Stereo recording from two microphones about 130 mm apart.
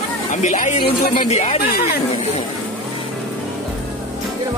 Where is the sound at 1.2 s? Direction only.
55° left (ahead or behind).